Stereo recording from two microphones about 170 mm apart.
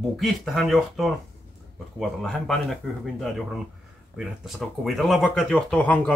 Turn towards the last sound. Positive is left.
turn(degrees=5)  # may be behind; listen again after turning